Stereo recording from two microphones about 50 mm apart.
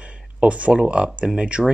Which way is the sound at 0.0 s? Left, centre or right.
Right.